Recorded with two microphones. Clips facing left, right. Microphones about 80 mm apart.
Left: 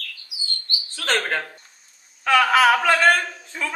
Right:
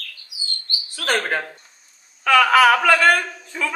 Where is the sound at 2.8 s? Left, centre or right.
Centre.